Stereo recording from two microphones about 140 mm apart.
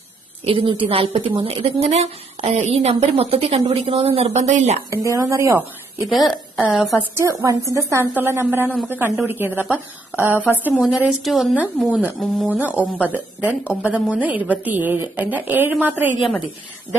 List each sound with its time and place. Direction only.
0.5 s a woman's voice: 40° right (ahead or behind); by 4.7 s 55° right (ahead or behind)
4.9 s speech: 20° right (ahead or behind)
6.0 s a woman's voice: centre (ahead or behind)
7.2 s a woman's voice: 20° right (ahead or behind); by 12.4 s 5° left (ahead or behind)
12.4 s a woman's voice: 10° right (ahead or behind)